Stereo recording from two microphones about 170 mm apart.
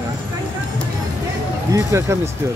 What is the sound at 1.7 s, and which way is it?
Speech, 15° right (ahead or behind).